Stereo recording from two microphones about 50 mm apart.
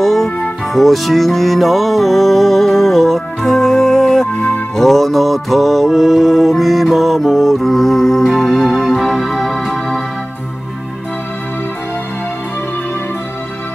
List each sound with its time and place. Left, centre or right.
0.0 s music: centre